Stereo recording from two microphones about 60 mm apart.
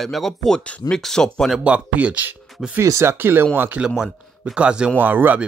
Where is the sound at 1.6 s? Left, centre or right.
Right.